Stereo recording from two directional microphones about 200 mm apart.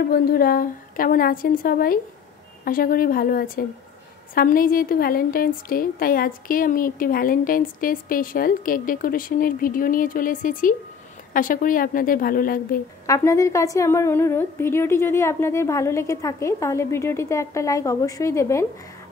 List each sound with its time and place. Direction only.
0.0 s a woman's voice: 50° left (ahead or behind)
13.0 s a woman's voice: 15° left (ahead or behind)